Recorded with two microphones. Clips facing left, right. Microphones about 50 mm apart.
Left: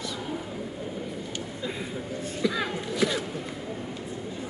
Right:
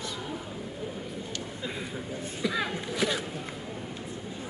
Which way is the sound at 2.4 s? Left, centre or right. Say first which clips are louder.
Left 2 dB; centre.